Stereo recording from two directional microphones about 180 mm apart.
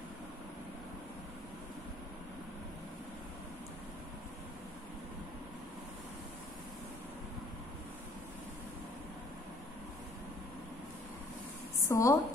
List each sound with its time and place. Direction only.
11.9 s a woman's voice: 15° left (ahead or behind)